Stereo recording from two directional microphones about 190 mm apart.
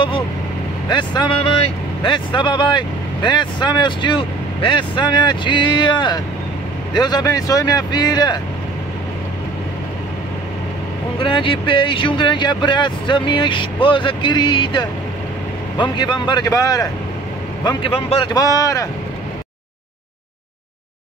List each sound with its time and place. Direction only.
0.8 s speech: 25° left (ahead or behind)
11.1 s speech: 25° left (ahead or behind)